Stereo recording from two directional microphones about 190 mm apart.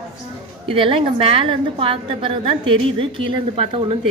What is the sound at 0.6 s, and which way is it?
A woman's voice, 30° right (ahead or behind).